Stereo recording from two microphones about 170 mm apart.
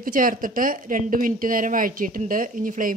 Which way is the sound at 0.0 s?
55° right (ahead or behind).